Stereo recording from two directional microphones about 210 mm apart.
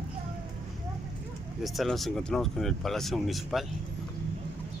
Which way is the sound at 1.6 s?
Centre (ahead or behind).